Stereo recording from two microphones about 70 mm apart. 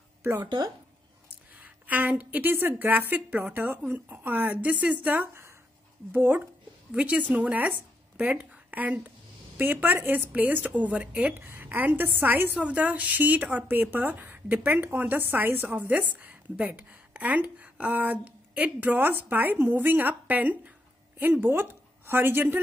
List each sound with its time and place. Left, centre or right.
1.6 s a woman's voice: right
11.3 s a woman's voice: right